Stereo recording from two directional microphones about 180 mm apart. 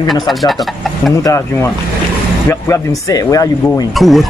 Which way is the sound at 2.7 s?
20° left (ahead or behind).